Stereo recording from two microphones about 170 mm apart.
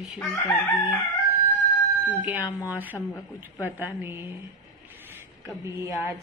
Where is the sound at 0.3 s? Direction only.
Centre (ahead or behind).